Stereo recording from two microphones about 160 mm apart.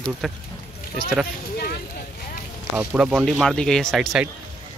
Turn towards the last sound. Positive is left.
turn(degrees=0)  # may be behind; listen again after turning